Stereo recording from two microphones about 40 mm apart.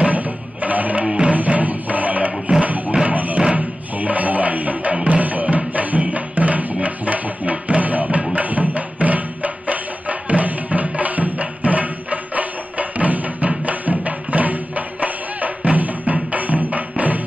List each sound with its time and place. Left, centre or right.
0.7 s music: right
1.0 s music: right
1.3 s music: right